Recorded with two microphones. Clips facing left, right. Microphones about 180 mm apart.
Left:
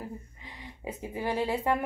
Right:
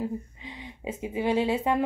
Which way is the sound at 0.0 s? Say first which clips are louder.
Right 9 dB; 20° right (ahead or behind).